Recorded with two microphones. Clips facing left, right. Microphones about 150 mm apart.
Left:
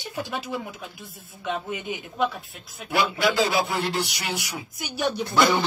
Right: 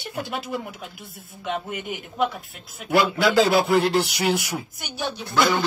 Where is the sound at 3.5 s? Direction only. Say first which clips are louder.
Right 6 dB; 60° right (ahead or behind).